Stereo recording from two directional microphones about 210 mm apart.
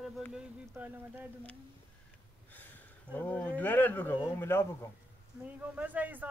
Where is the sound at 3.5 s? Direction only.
10° left (ahead or behind).